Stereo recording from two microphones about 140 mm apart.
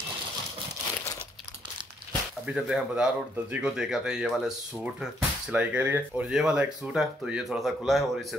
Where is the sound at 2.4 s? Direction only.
5° right (ahead or behind).